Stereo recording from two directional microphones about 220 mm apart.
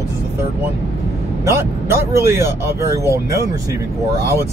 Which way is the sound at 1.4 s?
10° right (ahead or behind).